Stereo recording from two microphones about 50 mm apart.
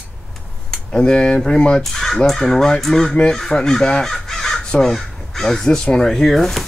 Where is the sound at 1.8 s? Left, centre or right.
Centre.